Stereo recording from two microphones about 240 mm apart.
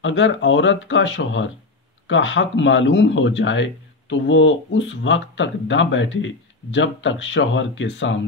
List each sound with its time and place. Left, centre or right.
0.0 s speech: left